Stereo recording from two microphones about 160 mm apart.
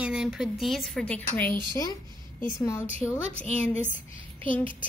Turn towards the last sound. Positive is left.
turn(degrees=55)  # may be behind; listen again after turning